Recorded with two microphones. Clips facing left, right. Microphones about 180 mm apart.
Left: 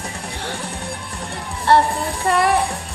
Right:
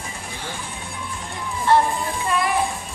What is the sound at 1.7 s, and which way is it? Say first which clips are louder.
Speech: left 3 dB; 70° left (ahead or behind).